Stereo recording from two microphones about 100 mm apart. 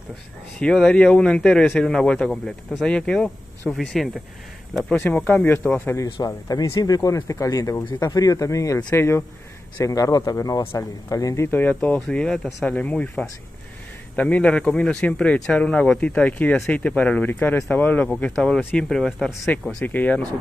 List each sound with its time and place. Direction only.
0.6 s speech: 10° left (ahead or behind)
5.0 s speech: 15° left (ahead or behind)
6.2 s speech: 40° left (ahead or behind)
11.4 s speech: 15° left (ahead or behind)
18.2 s speech: 5° left (ahead or behind)
19.8 s speech: 15° left (ahead or behind)